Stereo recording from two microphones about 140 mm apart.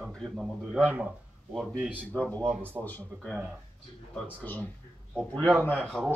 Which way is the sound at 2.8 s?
10° left (ahead or behind).